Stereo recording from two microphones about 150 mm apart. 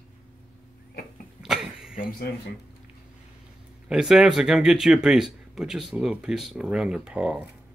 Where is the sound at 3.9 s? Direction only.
5° right (ahead or behind).